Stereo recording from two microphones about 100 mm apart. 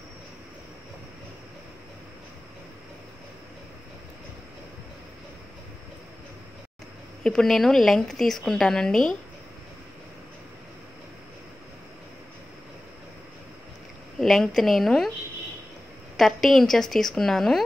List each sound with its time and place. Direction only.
7.2 s a woman's voice: 5° left (ahead or behind)
14.2 s a woman's voice: centre (ahead or behind)
16.2 s a woman's voice: centre (ahead or behind)